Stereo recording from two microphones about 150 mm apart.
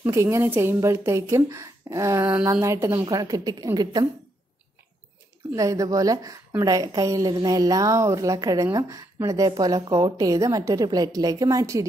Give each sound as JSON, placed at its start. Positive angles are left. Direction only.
{"t": 0.0, "sound": "a woman's voice", "side_deg": -20}
{"t": 5.5, "sound": "a woman's voice", "side_deg": -20}